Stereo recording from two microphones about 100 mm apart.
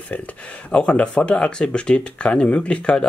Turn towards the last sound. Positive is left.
turn(degrees=10)  # may be behind; listen again after turning